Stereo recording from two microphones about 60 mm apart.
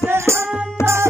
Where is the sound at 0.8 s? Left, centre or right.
Left.